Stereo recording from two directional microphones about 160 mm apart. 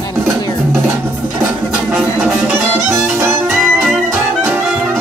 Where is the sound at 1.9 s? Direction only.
10° right (ahead or behind).